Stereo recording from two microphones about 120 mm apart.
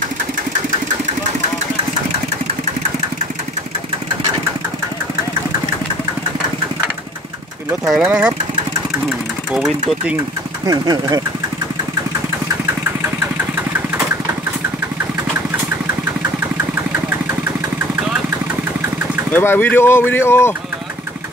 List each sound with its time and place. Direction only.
8.0 s speech: 10° right (ahead or behind)
9.5 s speech: 5° right (ahead or behind)
10.6 s speech: 30° right (ahead or behind)
19.3 s speech: 15° left (ahead or behind)